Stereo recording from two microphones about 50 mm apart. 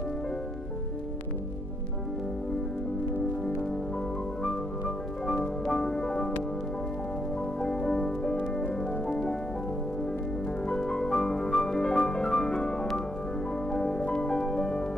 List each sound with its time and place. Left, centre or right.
4.4 s music: centre
7.6 s music: centre
10.7 s music: centre